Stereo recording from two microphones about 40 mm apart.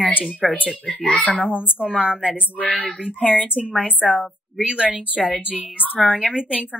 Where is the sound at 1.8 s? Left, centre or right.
Right.